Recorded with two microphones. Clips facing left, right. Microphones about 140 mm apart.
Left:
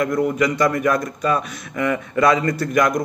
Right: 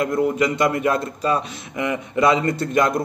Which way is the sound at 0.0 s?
25° right (ahead or behind).